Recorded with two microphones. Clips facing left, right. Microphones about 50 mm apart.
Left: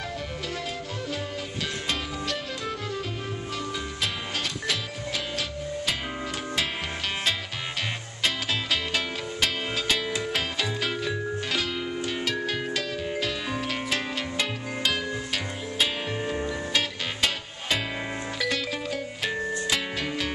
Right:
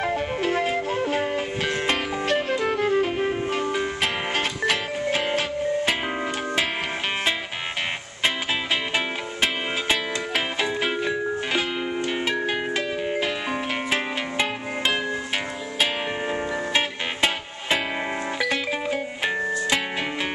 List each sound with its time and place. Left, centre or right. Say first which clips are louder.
0.0 s music: right 9 dB; right
8.9 s music: right 3 dB; right
16.3 s music: right 3 dB; right